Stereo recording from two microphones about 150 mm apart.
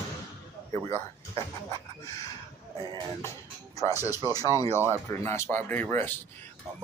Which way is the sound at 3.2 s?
20° left (ahead or behind).